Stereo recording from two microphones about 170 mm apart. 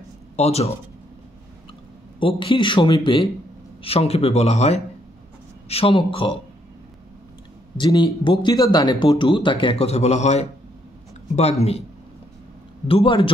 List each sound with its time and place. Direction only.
0.4 s speech: 40° left (ahead or behind)
2.1 s speech: 30° left (ahead or behind)
7.7 s speech: 25° left (ahead or behind)
12.8 s speech: 30° left (ahead or behind)